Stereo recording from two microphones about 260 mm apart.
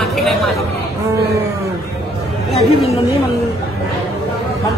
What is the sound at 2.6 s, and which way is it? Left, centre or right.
Speech, left.